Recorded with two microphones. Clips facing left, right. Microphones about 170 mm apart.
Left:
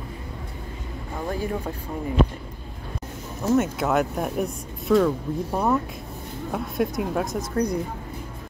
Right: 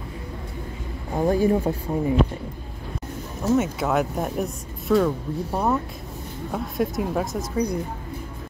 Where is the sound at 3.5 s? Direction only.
Centre (ahead or behind).